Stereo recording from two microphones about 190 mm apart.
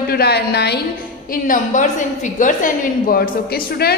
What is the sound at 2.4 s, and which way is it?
Speech, 45° left (ahead or behind).